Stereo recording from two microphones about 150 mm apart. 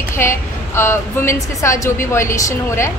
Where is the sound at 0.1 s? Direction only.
20° left (ahead or behind).